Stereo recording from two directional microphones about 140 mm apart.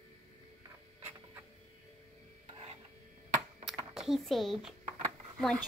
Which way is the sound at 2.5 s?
45° right (ahead or behind).